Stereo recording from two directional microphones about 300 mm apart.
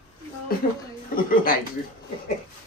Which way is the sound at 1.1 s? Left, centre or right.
Left.